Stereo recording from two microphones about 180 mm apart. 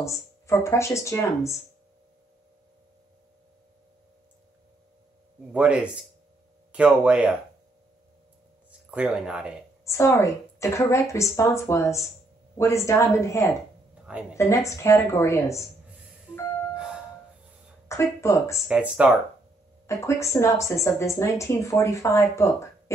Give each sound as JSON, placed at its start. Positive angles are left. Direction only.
{"t": 0.0, "sound": "speech", "side_deg": 15}
{"t": 5.5, "sound": "speech", "side_deg": -5}
{"t": 8.9, "sound": "speech", "side_deg": -5}
{"t": 9.8, "sound": "speech", "side_deg": 15}
{"t": 16.7, "sound": "music", "side_deg": -5}
{"t": 17.8, "sound": "speech", "side_deg": 15}
{"t": 18.7, "sound": "speech", "side_deg": -5}
{"t": 19.9, "sound": "speech", "side_deg": 15}